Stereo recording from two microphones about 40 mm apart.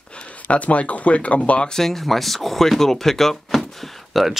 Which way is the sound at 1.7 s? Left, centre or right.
Centre.